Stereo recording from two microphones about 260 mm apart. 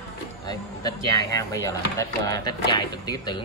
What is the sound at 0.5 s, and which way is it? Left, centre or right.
Speech, centre.